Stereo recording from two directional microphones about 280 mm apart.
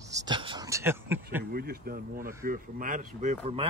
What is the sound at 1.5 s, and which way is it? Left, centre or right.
Speech, right.